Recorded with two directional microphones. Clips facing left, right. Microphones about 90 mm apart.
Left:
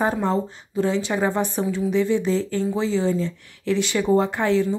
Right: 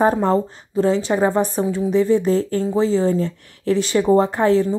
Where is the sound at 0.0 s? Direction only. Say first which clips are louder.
Right 5 dB; 40° right (ahead or behind).